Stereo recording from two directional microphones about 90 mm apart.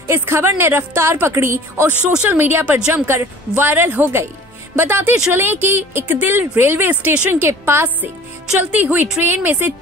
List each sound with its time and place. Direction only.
0.0 s a woman's voice: 30° right (ahead or behind)